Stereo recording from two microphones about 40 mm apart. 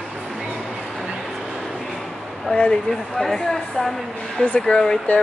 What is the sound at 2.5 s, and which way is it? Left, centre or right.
Speech, left.